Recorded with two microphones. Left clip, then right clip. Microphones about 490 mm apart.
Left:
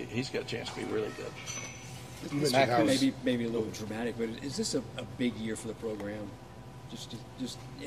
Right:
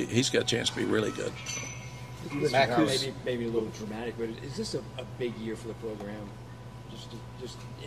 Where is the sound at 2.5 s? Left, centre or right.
Centre.